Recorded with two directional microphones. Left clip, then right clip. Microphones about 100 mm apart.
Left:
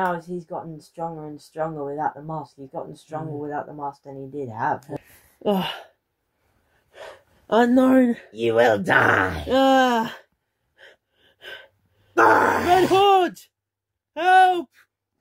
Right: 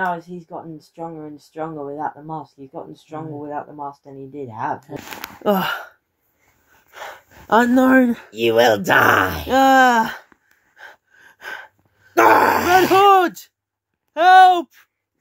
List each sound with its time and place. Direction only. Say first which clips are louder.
0.1 s speech: right 1 dB; 40° left (ahead or behind)
5.4 s speech: right 5 dB; 30° right (ahead or behind)
6.9 s gasp: right 6 dB; 25° right (ahead or behind); by 8.3 s 45° right (ahead or behind)
8.3 s speech: right 4 dB; 20° right (ahead or behind)
10.8 s gasp: right 8 dB; 25° right (ahead or behind)
12.2 s speech: right 3 dB; 10° left (ahead or behind)
12.4 s speech: right 4 dB; 5° right (ahead or behind)
12.9 s speech: right 4 dB; 25° right (ahead or behind)